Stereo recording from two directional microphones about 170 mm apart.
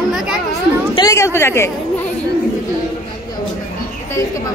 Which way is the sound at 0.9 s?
20° left (ahead or behind).